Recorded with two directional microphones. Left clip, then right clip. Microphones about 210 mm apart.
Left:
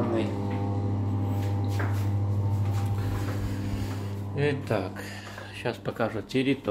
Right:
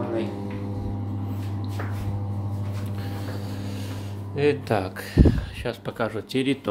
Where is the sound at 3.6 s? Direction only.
25° right (ahead or behind).